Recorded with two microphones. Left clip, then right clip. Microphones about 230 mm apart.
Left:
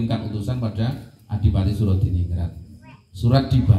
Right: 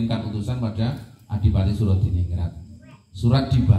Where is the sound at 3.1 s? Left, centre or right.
Left.